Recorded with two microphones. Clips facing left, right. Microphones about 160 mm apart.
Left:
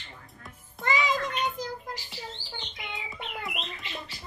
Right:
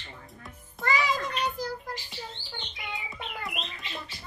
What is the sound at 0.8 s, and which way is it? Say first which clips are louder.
Music: even; 20° left (ahead or behind).